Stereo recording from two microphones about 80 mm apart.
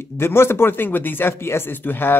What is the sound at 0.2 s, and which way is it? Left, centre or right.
Speech, left.